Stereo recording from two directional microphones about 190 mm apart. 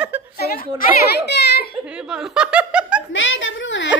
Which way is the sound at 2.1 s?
5° right (ahead or behind).